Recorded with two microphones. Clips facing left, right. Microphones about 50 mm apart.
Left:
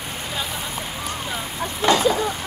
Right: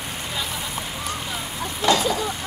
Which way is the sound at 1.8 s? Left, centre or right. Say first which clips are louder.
Left 2 dB; left.